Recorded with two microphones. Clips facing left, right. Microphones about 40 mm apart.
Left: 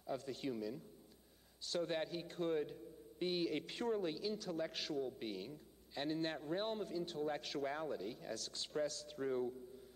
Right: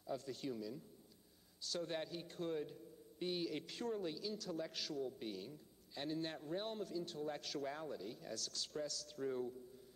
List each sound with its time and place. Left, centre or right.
0.2 s a man's voice: centre